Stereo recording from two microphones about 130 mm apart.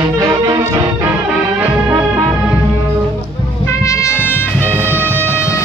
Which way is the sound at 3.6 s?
20° left (ahead or behind).